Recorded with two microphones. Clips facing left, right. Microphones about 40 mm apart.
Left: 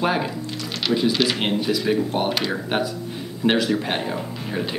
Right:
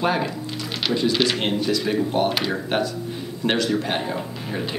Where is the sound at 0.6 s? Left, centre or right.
Centre.